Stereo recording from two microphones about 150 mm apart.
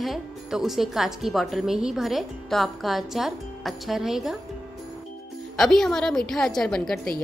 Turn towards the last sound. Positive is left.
turn(degrees=5)  # may be behind; listen again after turning